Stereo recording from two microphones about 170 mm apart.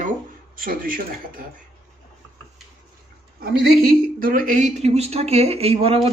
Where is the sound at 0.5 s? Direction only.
55° right (ahead or behind).